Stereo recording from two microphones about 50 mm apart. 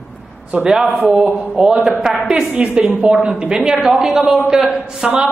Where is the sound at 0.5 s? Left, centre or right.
Centre.